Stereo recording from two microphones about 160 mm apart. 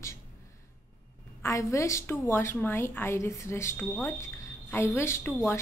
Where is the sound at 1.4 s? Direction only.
20° left (ahead or behind).